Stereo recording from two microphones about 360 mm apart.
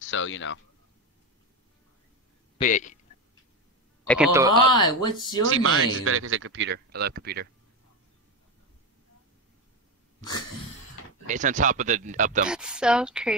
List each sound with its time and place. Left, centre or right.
0.0 s speech: left
2.5 s speech: left
4.1 s a man's voice: centre
4.7 s speech: centre
5.4 s speech: right
11.2 s speech: right
12.4 s speech: centre